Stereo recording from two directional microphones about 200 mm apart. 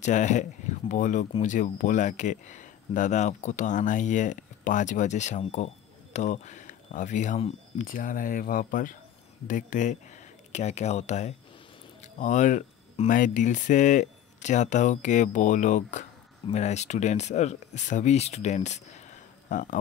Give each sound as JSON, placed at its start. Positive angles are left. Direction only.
{"t": 0.0, "sound": "speech", "side_deg": 35}